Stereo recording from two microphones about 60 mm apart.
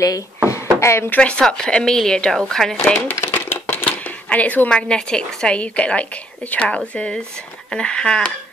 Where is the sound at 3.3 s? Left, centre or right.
Left.